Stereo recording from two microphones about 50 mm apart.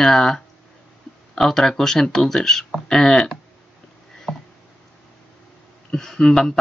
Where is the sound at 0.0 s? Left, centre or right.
Centre.